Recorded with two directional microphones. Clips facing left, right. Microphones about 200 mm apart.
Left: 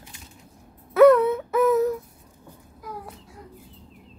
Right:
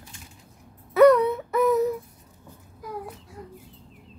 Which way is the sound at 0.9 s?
Centre (ahead or behind).